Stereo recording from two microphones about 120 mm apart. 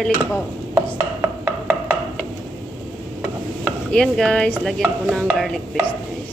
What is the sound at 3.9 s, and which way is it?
Dishes, 5° left (ahead or behind).